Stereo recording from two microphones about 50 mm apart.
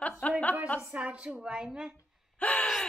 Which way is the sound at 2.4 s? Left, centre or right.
Left.